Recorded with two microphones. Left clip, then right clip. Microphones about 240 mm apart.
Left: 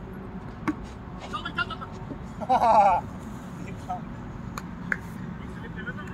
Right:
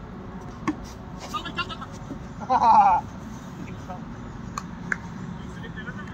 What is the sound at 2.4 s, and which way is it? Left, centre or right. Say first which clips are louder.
Speech: right 2 dB; left.